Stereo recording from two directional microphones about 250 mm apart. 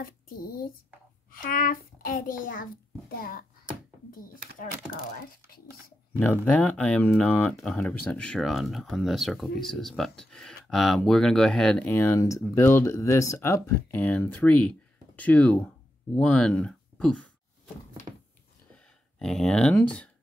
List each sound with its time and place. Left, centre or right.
1.4 s a child's voice: left
6.1 s speech: centre
19.1 s speech: centre